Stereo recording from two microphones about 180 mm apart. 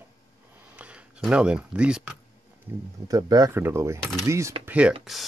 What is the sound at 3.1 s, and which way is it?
Speech, 20° right (ahead or behind).